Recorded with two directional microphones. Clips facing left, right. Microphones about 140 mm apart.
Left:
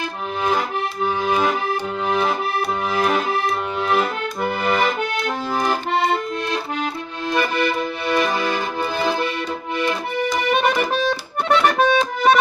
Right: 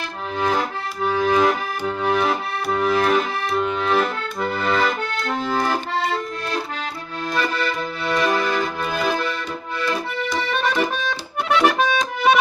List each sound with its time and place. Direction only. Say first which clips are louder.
1.1 s accordion: right 4 dB; 20° left (ahead or behind)
2.0 s accordion: even; centre (ahead or behind)
7.3 s accordion: left 3 dB; 20° left (ahead or behind)
8.4 s music: even; 20° left (ahead or behind)
9.8 s accordion: left 2 dB; 20° left (ahead or behind); by 12.4 s centre (ahead or behind)